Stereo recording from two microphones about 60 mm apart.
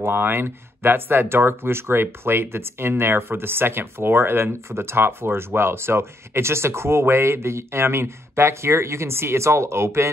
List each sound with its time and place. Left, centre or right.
0.0 s speech: right